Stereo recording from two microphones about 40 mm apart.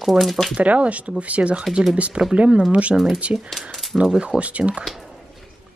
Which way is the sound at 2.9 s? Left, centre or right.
Centre.